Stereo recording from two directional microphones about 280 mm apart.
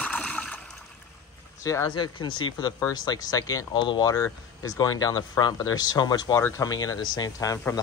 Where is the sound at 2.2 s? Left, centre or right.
Left.